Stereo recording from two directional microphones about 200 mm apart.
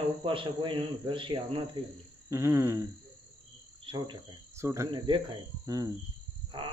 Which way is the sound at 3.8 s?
25° right (ahead or behind).